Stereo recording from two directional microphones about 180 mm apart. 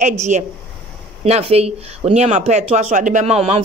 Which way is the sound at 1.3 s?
35° right (ahead or behind).